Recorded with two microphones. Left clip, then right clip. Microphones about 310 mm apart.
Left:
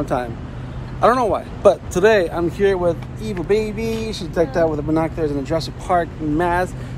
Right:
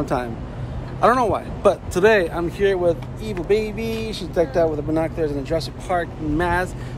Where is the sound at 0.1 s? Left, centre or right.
Centre.